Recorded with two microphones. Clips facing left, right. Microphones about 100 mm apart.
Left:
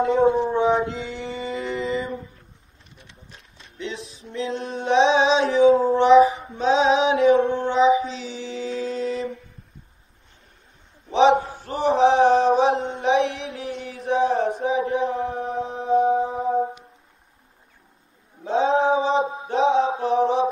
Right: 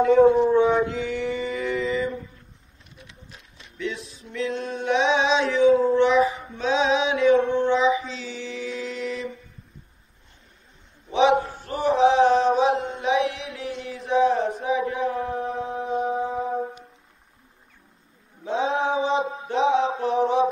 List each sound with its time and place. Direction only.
0.0 s a sound: 30° left (ahead or behind)
0.5 s mantra: 25° left (ahead or behind)
3.9 s music: 25° left (ahead or behind)
6.5 s female singing: 30° left (ahead or behind)
11.3 s a sound: centre (ahead or behind)
11.6 s mantra: 25° left (ahead or behind)
13.9 s a sound: 30° left (ahead or behind)
18.4 s male singing: 30° left (ahead or behind)
19.4 s mantra: 30° left (ahead or behind)